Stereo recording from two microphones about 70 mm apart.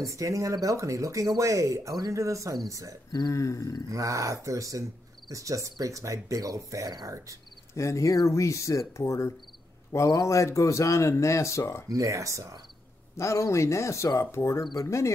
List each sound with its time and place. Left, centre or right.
0.0 s speech: right
3.1 s speech: left
3.3 s speech: left
3.9 s speech: right
7.7 s speech: left
11.9 s speech: right
13.2 s speech: left